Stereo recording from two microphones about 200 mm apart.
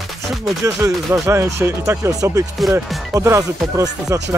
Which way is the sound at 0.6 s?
15° right (ahead or behind).